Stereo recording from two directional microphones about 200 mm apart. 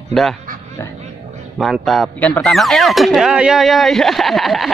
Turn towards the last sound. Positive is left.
turn(degrees=0)  # may be behind; listen again after turning